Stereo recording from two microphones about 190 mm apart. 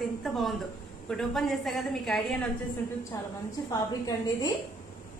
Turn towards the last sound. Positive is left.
turn(degrees=20)  # may be behind; listen again after turning